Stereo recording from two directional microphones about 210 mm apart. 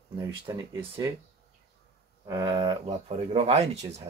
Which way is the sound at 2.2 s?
20° right (ahead or behind).